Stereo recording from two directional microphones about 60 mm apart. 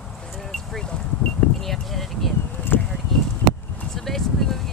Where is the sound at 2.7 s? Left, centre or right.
Left.